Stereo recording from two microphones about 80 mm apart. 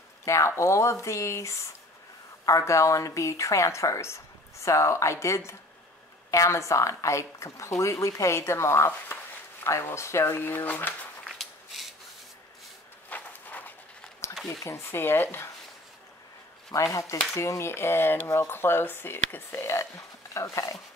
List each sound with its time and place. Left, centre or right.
0.2 s a woman's voice: left
11.2 s a sound: centre
13.1 s walk: left
14.3 s a sound: centre
14.6 s a woman's voice: left
16.7 s a woman's voice: left